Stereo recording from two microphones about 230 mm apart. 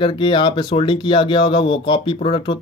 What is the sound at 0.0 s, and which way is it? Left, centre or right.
Speech, left.